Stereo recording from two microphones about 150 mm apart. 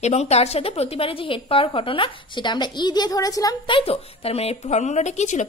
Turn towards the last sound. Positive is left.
turn(degrees=55)  # may be behind; listen again after turning